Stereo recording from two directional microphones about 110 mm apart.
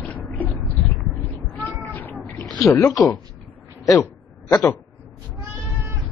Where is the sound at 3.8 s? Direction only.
30° left (ahead or behind).